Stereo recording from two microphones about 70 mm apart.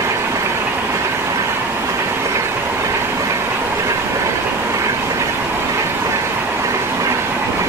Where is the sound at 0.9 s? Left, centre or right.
Right.